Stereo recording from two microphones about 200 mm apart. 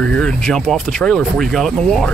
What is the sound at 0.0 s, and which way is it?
Speech, 5° left (ahead or behind).